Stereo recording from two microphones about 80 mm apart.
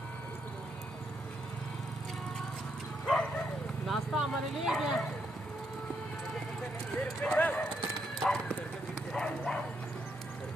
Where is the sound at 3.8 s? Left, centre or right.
Centre.